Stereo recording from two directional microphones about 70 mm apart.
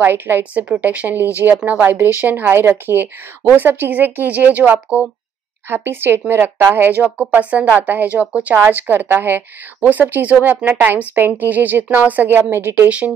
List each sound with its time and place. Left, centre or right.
0.0 s speech: right
0.4 s a woman's voice: right
7.0 s a woman's voice: centre